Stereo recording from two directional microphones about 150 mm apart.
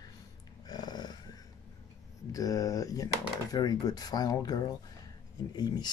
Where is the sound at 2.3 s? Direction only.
25° left (ahead or behind).